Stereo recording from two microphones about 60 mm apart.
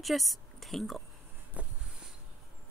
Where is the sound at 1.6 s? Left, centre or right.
Right.